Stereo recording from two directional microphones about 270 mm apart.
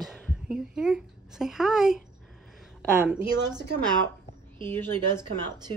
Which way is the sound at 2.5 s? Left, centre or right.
Centre.